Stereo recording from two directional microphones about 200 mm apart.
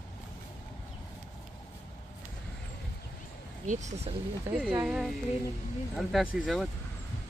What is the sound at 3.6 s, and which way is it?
Speech, 35° right (ahead or behind).